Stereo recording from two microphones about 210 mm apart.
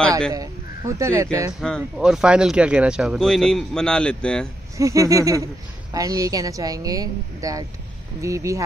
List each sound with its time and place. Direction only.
0.3 s a woman's voice: 15° right (ahead or behind)
1.6 s speech: centre (ahead or behind)
4.7 s a woman's voice: 15° right (ahead or behind)